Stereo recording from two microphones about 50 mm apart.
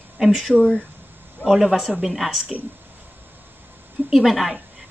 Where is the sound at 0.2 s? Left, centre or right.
Centre.